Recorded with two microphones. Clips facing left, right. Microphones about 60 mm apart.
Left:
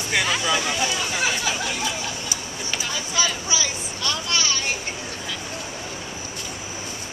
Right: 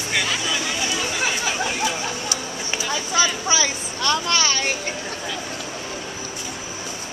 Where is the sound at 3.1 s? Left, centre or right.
Right.